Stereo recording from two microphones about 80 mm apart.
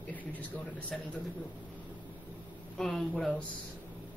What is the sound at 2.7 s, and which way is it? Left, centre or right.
Speech, centre.